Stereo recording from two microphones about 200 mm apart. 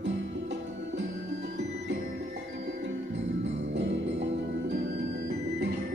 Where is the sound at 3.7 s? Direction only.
65° right (ahead or behind).